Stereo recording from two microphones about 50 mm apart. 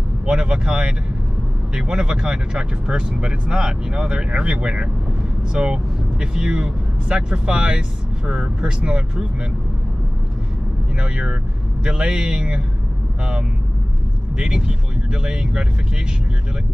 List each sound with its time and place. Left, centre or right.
0.3 s speech: centre
11.0 s speech: centre
14.3 s speech: centre